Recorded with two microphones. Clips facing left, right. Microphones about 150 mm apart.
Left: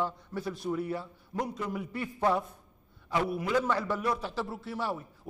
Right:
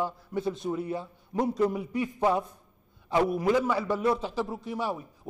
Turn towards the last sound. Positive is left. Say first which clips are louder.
# right 2 dB
turn(degrees=-15)  # may be behind; listen again after turning